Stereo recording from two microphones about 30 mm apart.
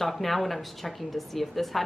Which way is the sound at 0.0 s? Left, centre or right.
Centre.